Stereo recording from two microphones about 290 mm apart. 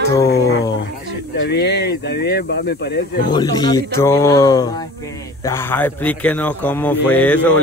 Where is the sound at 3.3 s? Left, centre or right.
Centre.